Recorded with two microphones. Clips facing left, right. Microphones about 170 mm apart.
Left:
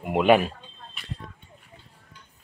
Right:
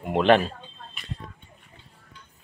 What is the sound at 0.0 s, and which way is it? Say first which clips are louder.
Speech: even; 10° left (ahead or behind).